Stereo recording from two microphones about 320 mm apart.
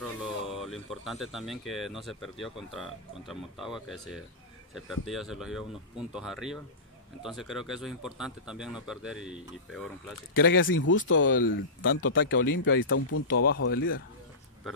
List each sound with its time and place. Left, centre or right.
0.2 s speech: centre
10.3 s speech: left